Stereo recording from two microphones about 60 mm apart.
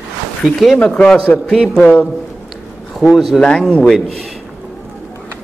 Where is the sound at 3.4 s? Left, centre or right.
Centre.